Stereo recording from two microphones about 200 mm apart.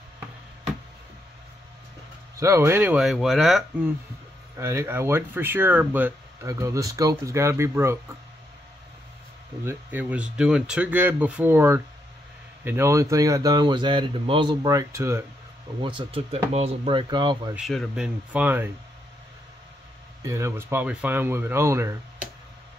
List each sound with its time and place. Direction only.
2.3 s speech: 15° right (ahead or behind)
9.7 s speech: 10° right (ahead or behind)
17.6 s speech: centre (ahead or behind)
20.2 s speech: 15° right (ahead or behind)